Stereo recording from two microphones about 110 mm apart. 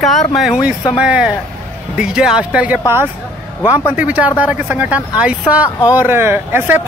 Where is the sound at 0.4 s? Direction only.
10° right (ahead or behind).